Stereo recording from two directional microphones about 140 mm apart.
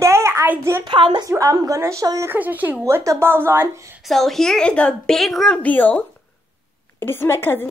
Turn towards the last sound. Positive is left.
turn(degrees=15)  # may be behind; listen again after turning